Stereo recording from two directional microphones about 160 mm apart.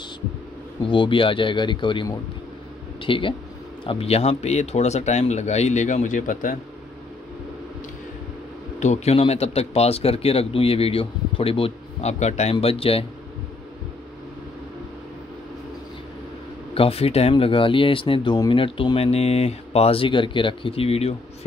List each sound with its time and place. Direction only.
0.8 s speech: 30° left (ahead or behind); by 6.5 s 55° left (ahead or behind)
8.7 s speech: 45° left (ahead or behind)
16.7 s speech: 35° left (ahead or behind)